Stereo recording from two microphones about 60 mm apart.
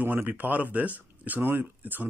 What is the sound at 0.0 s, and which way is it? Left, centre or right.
Speech, right.